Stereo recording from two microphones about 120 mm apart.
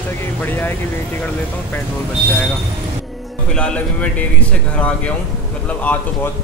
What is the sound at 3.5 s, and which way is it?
Speech, 10° left (ahead or behind).